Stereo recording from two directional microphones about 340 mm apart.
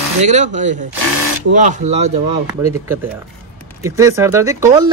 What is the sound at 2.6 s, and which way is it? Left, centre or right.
Speech, centre.